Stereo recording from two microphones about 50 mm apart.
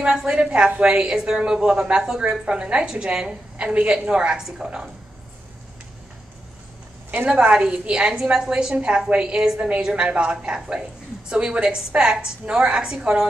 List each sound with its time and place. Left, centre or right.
0.0 s a woman's voice: centre
7.2 s a woman's voice: right